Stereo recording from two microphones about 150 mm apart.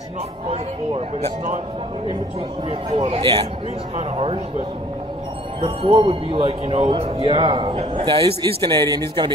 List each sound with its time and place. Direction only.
0.5 s a man's voice: 45° right (ahead or behind)
3.0 s speech: 35° right (ahead or behind)
5.6 s speech: 40° right (ahead or behind)